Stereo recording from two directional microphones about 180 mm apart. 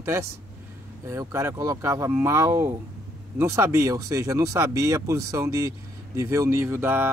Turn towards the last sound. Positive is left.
turn(degrees=-10)  # may be behind; listen again after turning